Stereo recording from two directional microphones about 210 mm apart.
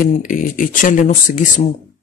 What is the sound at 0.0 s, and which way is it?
Speech, 40° left (ahead or behind).